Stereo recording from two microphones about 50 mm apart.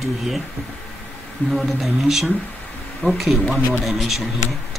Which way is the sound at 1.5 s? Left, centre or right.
Centre.